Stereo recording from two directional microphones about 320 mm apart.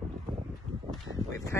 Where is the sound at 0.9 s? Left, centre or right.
Centre.